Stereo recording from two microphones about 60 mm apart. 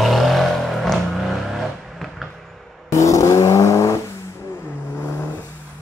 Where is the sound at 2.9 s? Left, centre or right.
Left.